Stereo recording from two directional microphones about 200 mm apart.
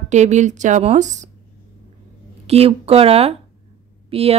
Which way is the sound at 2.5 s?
30° right (ahead or behind).